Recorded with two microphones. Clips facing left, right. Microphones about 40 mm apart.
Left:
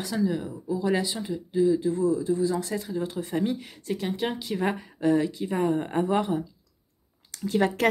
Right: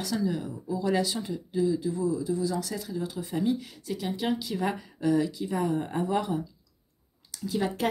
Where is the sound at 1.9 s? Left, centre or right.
Left.